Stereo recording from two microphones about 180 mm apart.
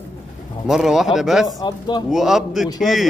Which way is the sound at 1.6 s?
25° left (ahead or behind).